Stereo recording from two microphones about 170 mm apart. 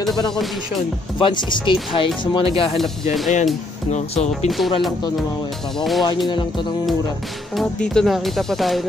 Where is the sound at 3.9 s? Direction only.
40° left (ahead or behind).